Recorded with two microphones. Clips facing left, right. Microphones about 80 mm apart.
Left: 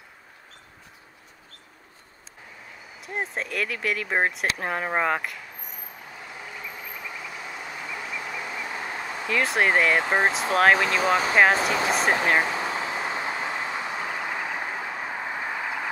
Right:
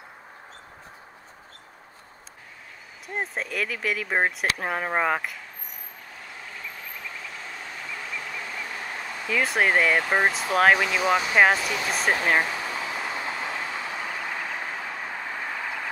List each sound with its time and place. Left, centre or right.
3.1 s speech: centre
6.4 s vehicle: centre
9.3 s speech: centre
9.9 s speech: centre
10.5 s speech: centre
11.5 s speech: left
12.5 s vehicle: left